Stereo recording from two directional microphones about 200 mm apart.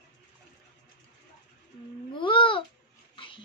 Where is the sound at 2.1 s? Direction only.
25° left (ahead or behind).